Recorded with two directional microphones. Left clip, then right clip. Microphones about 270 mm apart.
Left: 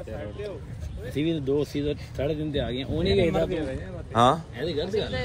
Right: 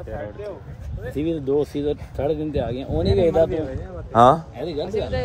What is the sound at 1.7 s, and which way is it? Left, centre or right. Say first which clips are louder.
Speech: right 4 dB; left.